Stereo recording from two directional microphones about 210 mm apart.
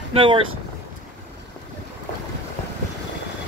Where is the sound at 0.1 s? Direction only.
25° right (ahead or behind).